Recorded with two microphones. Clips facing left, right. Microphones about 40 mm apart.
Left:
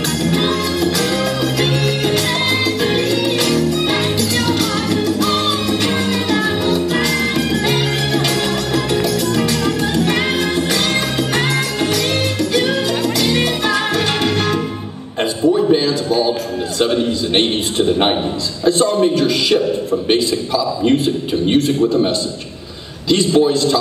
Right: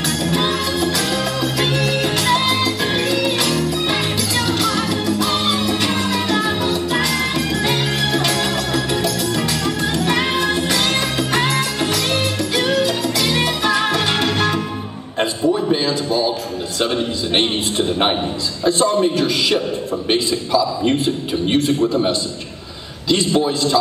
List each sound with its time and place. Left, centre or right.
0.2 s music: centre
15.1 s a sound: centre
16.8 s a man's voice: centre